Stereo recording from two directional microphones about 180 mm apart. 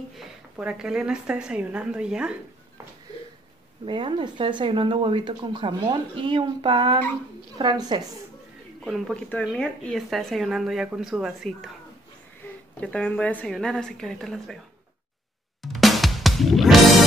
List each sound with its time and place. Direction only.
0.2 s speech: 5° right (ahead or behind)
3.8 s speech: 25° right (ahead or behind)
8.8 s speech: centre (ahead or behind)
12.8 s speech: 5° left (ahead or behind)
15.6 s music: centre (ahead or behind)